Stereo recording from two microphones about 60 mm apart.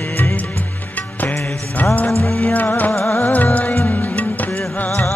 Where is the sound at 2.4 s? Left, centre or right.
Left.